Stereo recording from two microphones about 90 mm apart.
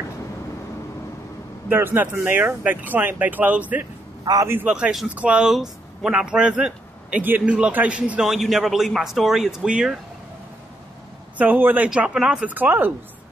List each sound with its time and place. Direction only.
1.7 s speech: 25° right (ahead or behind)
4.2 s a man's voice: 45° right (ahead or behind)
4.6 s a man's voice: 10° right (ahead or behind)
11.3 s speech: 20° right (ahead or behind)
12.5 s speech: 25° right (ahead or behind)